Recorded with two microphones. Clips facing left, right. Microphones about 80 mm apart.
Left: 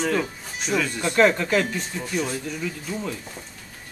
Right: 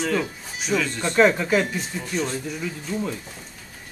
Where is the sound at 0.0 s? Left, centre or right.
Centre.